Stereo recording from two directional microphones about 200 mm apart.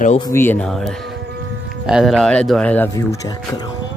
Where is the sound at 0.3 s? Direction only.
10° left (ahead or behind).